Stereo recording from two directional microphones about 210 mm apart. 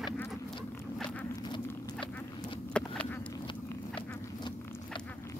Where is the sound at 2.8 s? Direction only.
5° left (ahead or behind).